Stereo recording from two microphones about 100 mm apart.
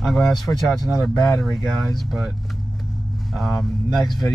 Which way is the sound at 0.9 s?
40° left (ahead or behind).